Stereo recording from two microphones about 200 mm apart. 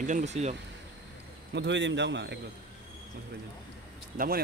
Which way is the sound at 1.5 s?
65° right (ahead or behind).